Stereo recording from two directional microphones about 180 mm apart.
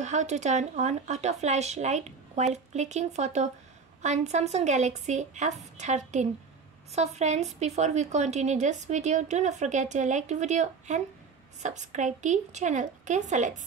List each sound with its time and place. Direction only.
0.0 s speech: 40° right (ahead or behind)